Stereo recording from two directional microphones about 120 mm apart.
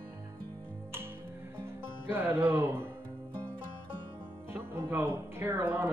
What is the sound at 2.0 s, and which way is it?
Speech, 20° right (ahead or behind).